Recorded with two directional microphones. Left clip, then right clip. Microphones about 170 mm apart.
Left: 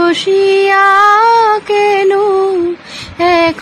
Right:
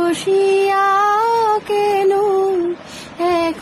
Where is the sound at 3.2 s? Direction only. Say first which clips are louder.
Left 7 dB; 15° left (ahead or behind).